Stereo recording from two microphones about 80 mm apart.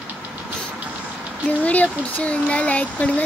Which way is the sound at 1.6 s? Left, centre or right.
Centre.